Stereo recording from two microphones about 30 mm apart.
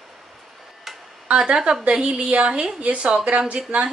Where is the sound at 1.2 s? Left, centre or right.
Right.